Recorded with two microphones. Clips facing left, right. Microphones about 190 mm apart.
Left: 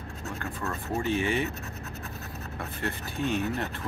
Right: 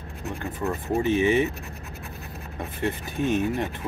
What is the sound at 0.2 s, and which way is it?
Speech, 15° right (ahead or behind).